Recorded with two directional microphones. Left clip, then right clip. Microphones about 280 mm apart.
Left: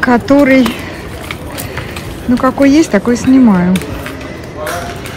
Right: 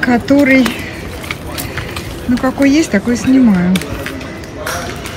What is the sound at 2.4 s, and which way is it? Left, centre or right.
Speech, centre.